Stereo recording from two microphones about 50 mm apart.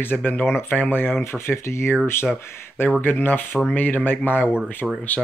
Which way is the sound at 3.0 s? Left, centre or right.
Left.